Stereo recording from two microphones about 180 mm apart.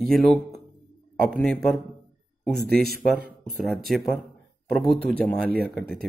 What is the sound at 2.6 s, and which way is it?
Speech, 60° right (ahead or behind).